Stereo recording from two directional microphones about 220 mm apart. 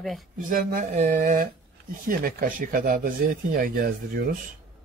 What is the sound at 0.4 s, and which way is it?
Speech, 40° right (ahead or behind).